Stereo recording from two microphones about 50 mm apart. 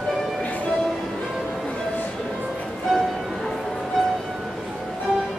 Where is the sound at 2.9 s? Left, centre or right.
Centre.